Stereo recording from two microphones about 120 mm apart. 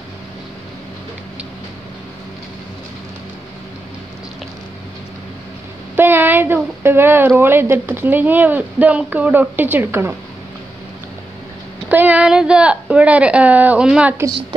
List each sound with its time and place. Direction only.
5.9 s speech: 20° right (ahead or behind)
11.9 s speech: 15° right (ahead or behind)